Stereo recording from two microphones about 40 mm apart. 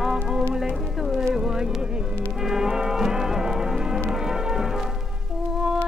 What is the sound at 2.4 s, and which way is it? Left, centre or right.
Music, centre.